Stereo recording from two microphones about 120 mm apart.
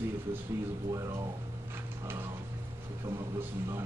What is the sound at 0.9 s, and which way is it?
Speech, 25° right (ahead or behind).